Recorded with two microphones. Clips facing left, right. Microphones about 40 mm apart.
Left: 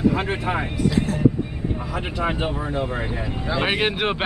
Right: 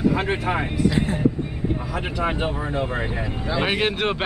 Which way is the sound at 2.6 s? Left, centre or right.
Centre.